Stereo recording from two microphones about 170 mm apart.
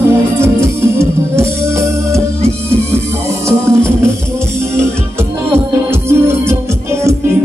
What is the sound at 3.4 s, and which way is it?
Music, 15° right (ahead or behind).